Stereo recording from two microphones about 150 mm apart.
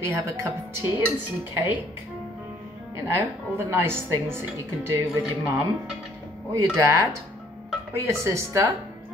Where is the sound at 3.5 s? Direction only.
15° right (ahead or behind).